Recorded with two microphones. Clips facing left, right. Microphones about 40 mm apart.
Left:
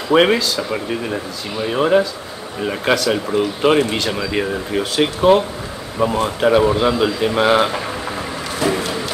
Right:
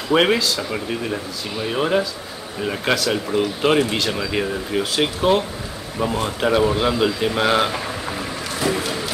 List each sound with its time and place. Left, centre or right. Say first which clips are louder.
0.1 s speech: left 3 dB; centre
8.5 s music: left 3 dB; centre